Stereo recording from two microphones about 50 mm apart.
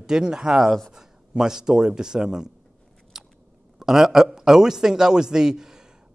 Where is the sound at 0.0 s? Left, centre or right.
Centre.